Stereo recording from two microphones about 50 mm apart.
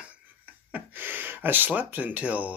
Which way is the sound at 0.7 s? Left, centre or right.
Right.